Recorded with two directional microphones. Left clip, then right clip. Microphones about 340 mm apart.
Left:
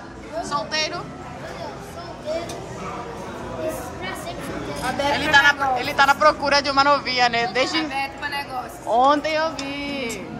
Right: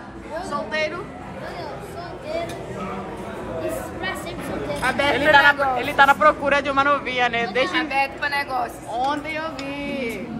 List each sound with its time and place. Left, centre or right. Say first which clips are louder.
0.4 s a sound: left 1 dB; centre
4.9 s a man's voice: right 1 dB; centre
8.9 s speech: left 8 dB; left